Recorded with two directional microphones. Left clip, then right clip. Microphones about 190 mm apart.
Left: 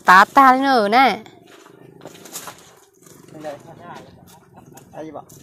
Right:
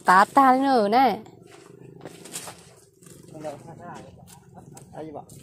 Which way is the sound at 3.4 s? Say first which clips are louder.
Left 3 dB; 10° left (ahead or behind).